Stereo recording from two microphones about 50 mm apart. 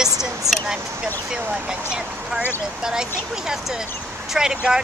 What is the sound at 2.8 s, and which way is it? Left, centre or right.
Speech, centre.